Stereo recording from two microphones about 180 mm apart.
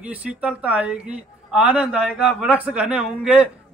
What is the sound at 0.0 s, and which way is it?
A man's voice, 5° right (ahead or behind).